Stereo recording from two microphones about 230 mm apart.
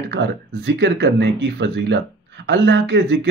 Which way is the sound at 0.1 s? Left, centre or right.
Right.